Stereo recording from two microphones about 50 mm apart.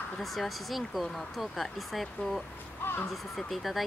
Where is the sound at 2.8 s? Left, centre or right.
Left.